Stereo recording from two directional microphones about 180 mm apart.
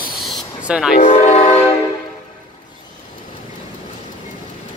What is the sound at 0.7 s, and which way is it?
Speech, 5° right (ahead or behind).